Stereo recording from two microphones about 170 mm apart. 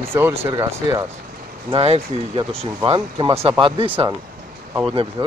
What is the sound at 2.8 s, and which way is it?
Speech, 25° right (ahead or behind).